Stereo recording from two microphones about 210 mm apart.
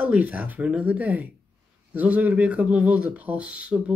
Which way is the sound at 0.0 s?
5° right (ahead or behind).